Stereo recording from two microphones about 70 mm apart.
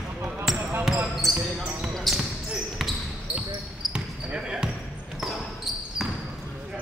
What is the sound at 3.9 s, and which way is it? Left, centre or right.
Basketball bounce, centre.